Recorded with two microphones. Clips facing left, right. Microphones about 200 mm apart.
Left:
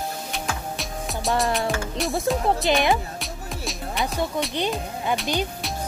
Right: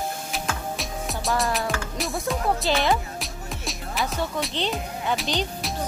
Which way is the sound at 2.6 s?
15° left (ahead or behind).